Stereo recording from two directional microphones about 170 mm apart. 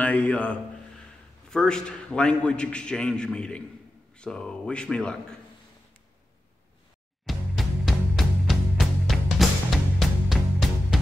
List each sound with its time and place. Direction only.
0.0 s a man's voice: 10° left (ahead or behind)
7.2 s music: centre (ahead or behind)